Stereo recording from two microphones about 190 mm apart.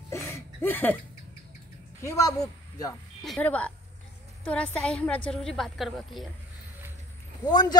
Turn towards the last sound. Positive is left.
turn(degrees=20)  # may be behind; listen again after turning